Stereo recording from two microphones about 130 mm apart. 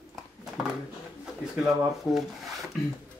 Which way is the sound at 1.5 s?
5° right (ahead or behind).